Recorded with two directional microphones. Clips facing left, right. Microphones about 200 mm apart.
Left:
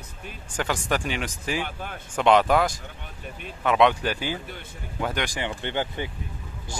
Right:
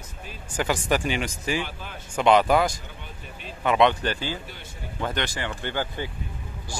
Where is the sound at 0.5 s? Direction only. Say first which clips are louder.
Right 2 dB; 5° right (ahead or behind).